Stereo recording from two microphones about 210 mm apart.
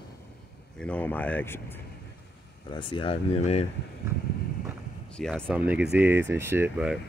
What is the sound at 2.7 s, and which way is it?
Speech, 25° left (ahead or behind).